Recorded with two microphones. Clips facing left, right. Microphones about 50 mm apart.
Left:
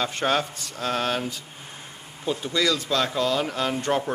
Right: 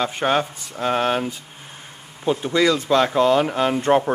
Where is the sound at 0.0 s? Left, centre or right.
Centre.